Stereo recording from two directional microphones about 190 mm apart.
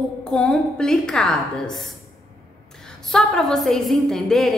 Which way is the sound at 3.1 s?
Centre (ahead or behind).